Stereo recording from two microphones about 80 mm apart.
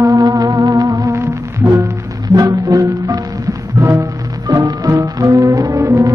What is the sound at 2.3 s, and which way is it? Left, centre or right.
Music, right.